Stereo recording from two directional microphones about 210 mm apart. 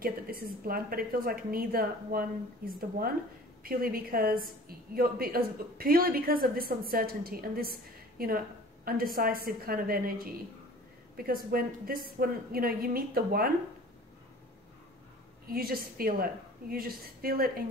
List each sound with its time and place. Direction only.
0.0 s a woman's voice: 45° right (ahead or behind)
15.5 s a woman's voice: 45° right (ahead or behind)